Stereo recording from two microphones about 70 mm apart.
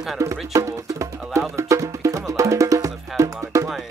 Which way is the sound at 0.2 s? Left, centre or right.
Right.